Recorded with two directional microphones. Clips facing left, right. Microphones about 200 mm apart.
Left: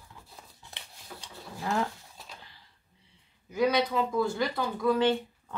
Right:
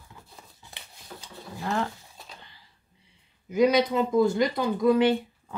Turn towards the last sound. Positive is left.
turn(degrees=-10)  # may be behind; listen again after turning